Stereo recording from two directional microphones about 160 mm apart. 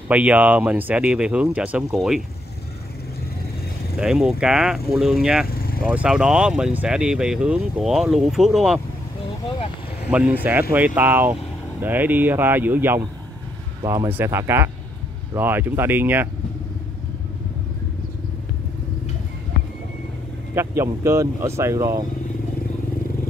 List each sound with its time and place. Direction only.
0.1 s speech: 10° right (ahead or behind)
3.9 s speech: centre (ahead or behind)
5.5 s vehicle: 70° left (ahead or behind)
5.9 s speech: 5° right (ahead or behind)
10.1 s speech: 10° right (ahead or behind)
20.5 s speech: 15° right (ahead or behind)